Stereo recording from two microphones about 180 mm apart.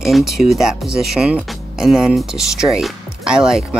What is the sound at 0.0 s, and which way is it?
Speech, centre (ahead or behind).